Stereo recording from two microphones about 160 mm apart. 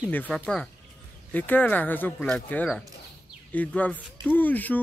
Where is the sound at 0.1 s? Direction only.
5° left (ahead or behind).